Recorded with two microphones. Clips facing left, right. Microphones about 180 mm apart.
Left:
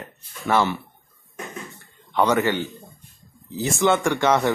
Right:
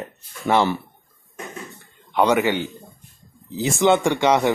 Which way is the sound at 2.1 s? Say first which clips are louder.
Right 2 dB; 20° right (ahead or behind).